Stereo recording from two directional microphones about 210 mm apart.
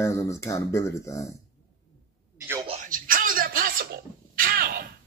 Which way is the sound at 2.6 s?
35° right (ahead or behind).